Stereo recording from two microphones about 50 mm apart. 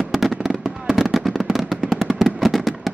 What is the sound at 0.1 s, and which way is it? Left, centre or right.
Fireworks, centre.